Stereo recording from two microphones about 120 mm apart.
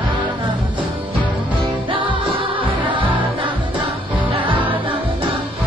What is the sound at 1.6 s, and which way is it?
Music, 45° right (ahead or behind).